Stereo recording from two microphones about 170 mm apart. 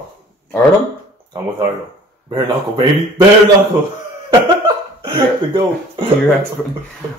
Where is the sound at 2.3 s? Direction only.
30° right (ahead or behind).